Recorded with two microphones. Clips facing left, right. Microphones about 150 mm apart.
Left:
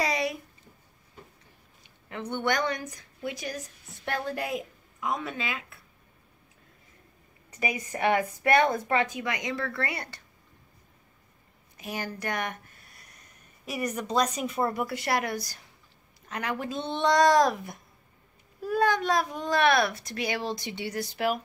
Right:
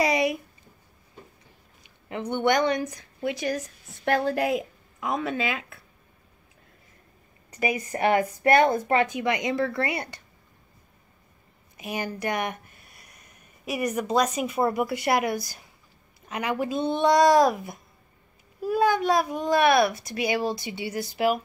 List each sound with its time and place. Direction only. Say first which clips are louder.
0.0 s a sound: right 5 dB; 15° right (ahead or behind)
2.0 s speech: right 5 dB; 15° right (ahead or behind)
3.3 s speech: right 7 dB; 75° right (ahead or behind)
3.5 s a woman's voice: right 6 dB; 55° right (ahead or behind); by 5.8 s 75° right (ahead or behind)
7.9 s a woman's voice: right 2 dB; 35° right (ahead or behind)
9.2 s a child's voice: right 7 dB; 20° right (ahead or behind)
11.7 s a child's voice: right 4 dB; 15° right (ahead or behind)
13.7 s a child's voice: right 4 dB; 10° right (ahead or behind)